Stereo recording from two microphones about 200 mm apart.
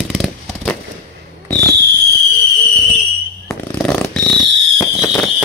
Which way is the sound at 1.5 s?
10° left (ahead or behind).